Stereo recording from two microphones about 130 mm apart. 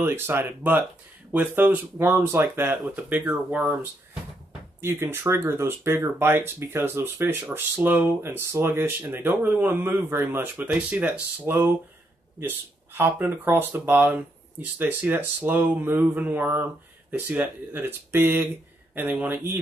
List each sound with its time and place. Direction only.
0.0 s speech: 15° right (ahead or behind)
4.8 s speech: 20° right (ahead or behind)